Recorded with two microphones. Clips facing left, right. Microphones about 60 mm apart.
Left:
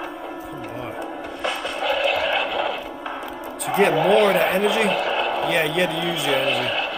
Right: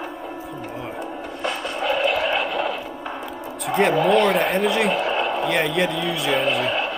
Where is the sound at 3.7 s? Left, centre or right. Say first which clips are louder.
Left 1 dB; centre.